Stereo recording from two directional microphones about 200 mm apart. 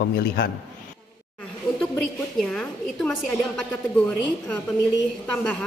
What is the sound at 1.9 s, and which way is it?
A woman's voice, 5° left (ahead or behind).